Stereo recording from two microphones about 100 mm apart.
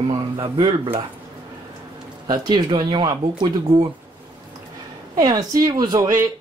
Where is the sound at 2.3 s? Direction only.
45° right (ahead or behind).